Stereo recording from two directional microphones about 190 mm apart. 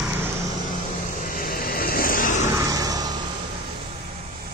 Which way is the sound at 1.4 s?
50° left (ahead or behind).